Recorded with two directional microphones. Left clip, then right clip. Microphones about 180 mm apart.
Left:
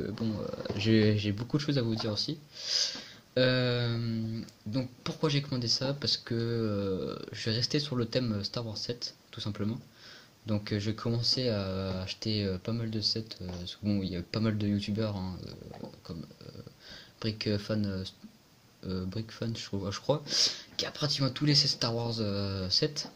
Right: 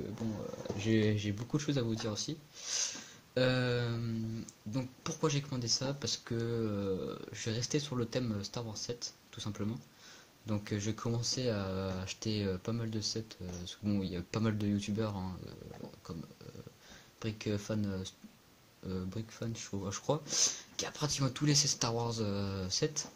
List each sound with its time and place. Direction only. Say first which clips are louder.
0.7 s speech: left 5 dB; 5° left (ahead or behind); by 15.3 s 15° right (ahead or behind)
17.2 s speech: left 5 dB; 5° right (ahead or behind)